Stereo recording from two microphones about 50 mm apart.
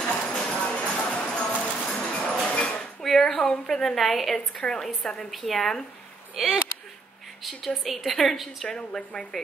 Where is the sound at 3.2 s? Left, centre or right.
Left.